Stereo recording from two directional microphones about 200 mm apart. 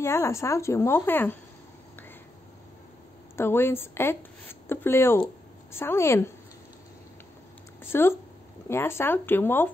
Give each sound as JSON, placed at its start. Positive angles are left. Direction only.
{"t": 0.0, "sound": "speech", "side_deg": 15}
{"t": 3.3, "sound": "speech", "side_deg": 10}
{"t": 7.9, "sound": "speech", "side_deg": 10}